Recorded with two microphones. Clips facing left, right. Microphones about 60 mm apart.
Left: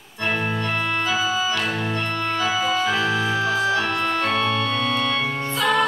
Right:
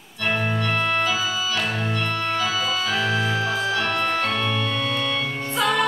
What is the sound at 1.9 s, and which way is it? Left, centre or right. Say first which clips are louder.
Organ: even; left.